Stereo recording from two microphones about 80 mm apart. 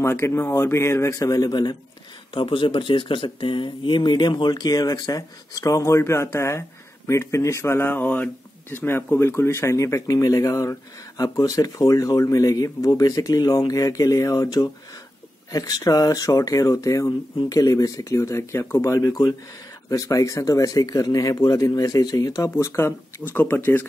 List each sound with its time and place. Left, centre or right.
0.0 s speech: left
2.3 s speech: left